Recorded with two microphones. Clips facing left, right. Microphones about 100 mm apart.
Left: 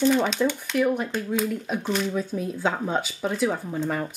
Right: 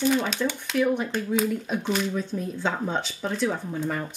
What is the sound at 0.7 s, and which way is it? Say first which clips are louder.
Speech: right 1 dB; centre (ahead or behind).